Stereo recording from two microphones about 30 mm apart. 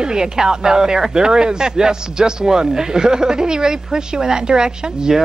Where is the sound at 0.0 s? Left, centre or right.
Right.